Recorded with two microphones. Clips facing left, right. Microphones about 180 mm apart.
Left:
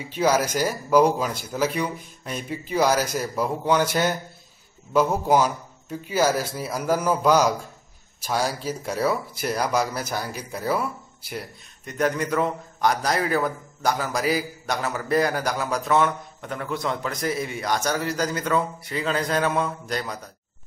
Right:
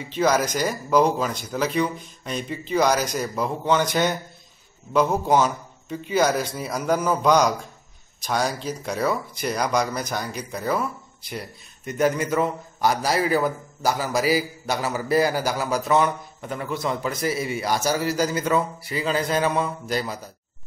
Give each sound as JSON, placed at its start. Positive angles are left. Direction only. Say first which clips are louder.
{"t": 0.0, "sound": "a man's voice", "louder": "even", "side_deg": 10}
{"t": 11.8, "sound": "a man's voice", "louder": "right 2 dB", "side_deg": -5}